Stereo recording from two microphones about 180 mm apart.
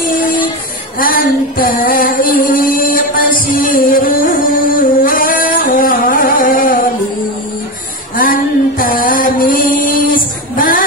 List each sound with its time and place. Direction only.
0.0 s a sound: 50° left (ahead or behind)
0.9 s female singing: 50° left (ahead or behind)
8.2 s mantra: 50° left (ahead or behind)
10.1 s female singing: 50° left (ahead or behind)